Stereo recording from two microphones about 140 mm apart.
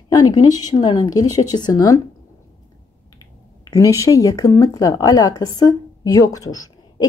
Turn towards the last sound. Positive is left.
turn(degrees=25)  # may be behind; listen again after turning